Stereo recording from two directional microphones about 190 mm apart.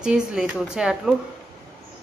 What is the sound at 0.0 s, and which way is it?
Speech, 5° right (ahead or behind).